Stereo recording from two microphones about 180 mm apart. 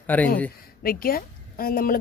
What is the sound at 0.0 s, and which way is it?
Speech, 10° left (ahead or behind).